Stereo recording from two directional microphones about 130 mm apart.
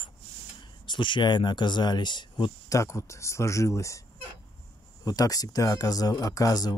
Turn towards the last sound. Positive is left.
turn(degrees=30)  # may be behind; listen again after turning